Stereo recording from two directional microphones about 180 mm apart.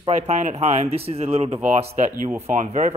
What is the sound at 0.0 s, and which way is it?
Speech, 40° right (ahead or behind).